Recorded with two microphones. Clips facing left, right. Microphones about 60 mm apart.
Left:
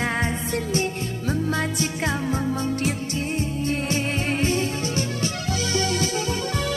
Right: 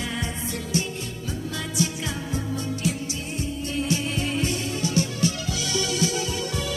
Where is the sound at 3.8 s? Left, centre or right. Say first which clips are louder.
Left 2 dB; left.